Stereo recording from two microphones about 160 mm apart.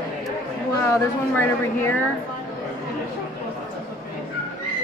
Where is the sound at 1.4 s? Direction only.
15° left (ahead or behind).